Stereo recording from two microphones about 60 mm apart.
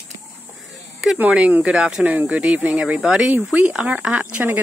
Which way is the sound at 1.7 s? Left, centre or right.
Centre.